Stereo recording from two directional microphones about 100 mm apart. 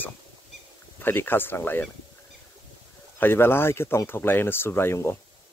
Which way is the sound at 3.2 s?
20° left (ahead or behind).